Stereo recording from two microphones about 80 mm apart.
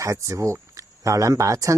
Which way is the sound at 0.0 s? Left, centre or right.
Right.